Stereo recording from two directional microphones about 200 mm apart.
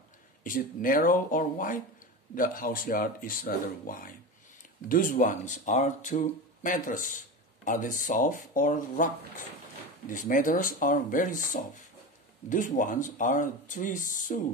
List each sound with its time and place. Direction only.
0.4 s speech: 45° left (ahead or behind)